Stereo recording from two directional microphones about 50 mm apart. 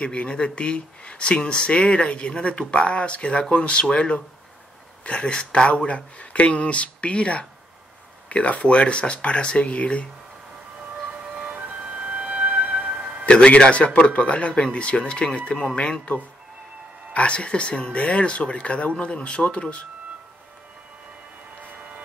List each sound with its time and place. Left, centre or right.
0.0 s a man's voice: left
11.8 s music: centre
13.2 s a man's voice: left